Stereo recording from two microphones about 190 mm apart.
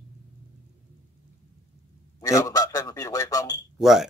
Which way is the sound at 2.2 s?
20° left (ahead or behind).